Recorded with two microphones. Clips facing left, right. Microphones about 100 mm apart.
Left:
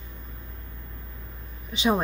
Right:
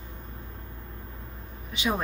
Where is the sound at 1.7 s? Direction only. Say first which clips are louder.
Left 5 dB; 25° left (ahead or behind).